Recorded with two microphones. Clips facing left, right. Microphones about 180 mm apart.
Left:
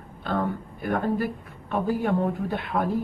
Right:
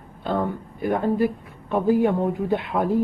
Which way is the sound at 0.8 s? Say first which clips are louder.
Right 4 dB; 20° right (ahead or behind).